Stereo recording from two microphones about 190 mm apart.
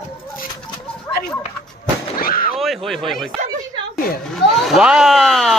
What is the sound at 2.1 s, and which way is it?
Artillery fire, 50° left (ahead or behind).